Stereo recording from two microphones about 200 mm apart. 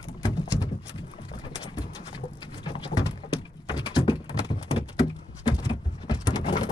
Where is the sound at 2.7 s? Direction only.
25° left (ahead or behind).